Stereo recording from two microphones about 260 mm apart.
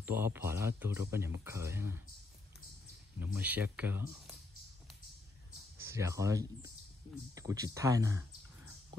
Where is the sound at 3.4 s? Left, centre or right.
Centre.